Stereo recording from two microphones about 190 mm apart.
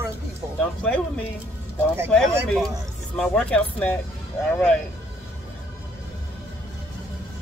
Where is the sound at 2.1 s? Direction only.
5° left (ahead or behind).